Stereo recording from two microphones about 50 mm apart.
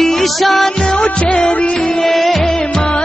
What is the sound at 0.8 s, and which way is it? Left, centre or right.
Music, centre.